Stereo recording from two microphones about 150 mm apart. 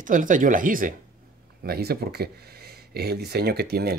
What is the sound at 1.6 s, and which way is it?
Speech, 90° right.